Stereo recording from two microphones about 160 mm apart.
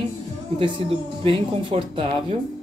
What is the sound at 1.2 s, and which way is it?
Speech, 35° right (ahead or behind).